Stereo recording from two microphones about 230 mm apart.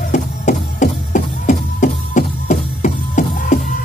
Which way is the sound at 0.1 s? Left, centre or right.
Left.